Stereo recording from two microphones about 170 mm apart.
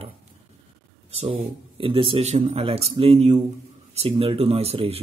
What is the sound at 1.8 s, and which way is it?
Speech, 30° right (ahead or behind).